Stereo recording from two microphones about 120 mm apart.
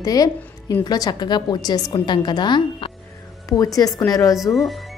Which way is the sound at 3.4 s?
30° left (ahead or behind).